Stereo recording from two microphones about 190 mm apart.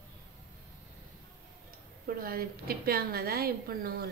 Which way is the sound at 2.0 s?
55° right (ahead or behind).